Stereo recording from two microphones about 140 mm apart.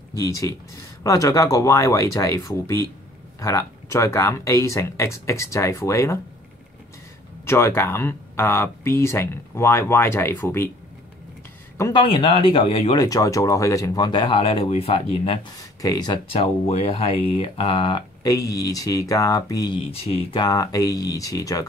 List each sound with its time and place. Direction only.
0.1 s speech: 25° left (ahead or behind)
7.4 s speech: 20° left (ahead or behind)
11.9 s speech: 35° left (ahead or behind)
12.9 s speech: 25° left (ahead or behind); by 15.4 s 45° left (ahead or behind)
15.8 s speech: 30° left (ahead or behind)
16.3 s speech: 45° left (ahead or behind); by 21.6 s 25° left (ahead or behind)